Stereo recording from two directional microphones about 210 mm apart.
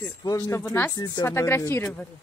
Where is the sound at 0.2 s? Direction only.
15° left (ahead or behind).